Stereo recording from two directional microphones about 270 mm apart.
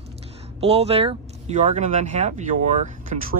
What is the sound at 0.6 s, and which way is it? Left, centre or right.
Speech, right.